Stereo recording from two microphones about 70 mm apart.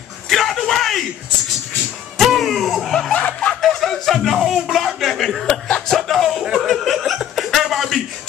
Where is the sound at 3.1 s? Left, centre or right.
Left.